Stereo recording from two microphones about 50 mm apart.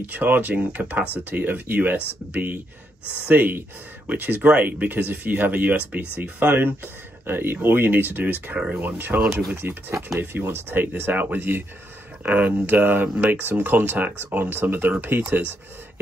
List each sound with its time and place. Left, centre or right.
0.0 s speech: right
8.5 s speech: centre
8.8 s speech: right